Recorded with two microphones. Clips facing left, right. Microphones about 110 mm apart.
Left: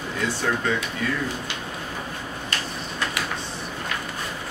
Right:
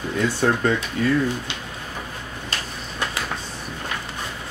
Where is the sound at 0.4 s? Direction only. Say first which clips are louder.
Right 4 dB; 40° right (ahead or behind).